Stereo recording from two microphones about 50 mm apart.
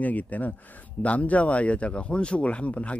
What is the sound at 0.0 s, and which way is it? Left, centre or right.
Speech, left.